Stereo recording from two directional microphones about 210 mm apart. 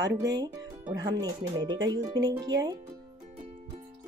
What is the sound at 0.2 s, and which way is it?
Speech, 15° right (ahead or behind).